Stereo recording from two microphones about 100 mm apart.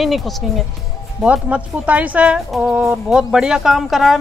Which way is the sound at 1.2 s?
15° right (ahead or behind).